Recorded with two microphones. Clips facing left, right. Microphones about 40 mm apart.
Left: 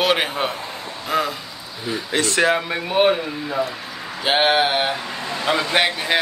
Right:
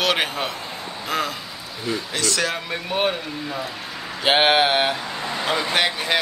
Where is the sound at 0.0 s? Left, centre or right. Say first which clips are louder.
Left 2 dB; centre.